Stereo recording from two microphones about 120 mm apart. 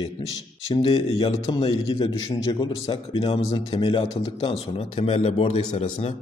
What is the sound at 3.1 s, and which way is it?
Speech, 50° left (ahead or behind).